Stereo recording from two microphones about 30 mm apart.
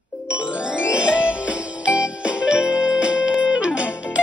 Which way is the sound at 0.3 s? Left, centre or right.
Right.